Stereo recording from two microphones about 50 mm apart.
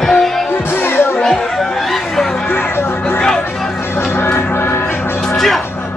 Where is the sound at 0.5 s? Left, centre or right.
Left.